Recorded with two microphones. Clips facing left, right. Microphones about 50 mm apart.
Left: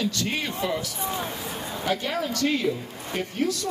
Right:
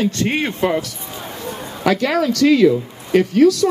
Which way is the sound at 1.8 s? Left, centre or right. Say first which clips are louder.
Right 10 dB; right.